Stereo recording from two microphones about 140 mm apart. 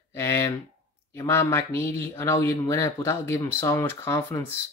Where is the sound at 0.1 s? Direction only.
20° left (ahead or behind).